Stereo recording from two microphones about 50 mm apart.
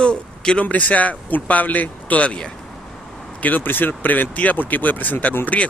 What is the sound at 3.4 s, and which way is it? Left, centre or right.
Speech, left.